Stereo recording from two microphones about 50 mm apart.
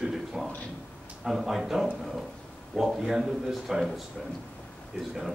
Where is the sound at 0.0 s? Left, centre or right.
Centre.